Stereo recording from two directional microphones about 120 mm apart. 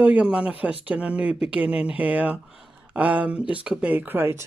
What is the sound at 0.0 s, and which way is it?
Speech, 10° right (ahead or behind).